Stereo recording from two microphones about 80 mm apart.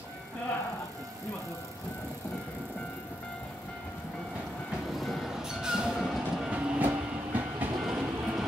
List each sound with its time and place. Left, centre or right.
4.9 s vehicle: centre
5.3 s music: centre
5.9 s train: centre
6.5 s train: centre
7.8 s train: centre